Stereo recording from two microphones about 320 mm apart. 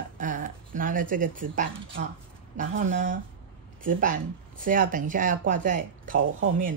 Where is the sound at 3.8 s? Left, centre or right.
Right.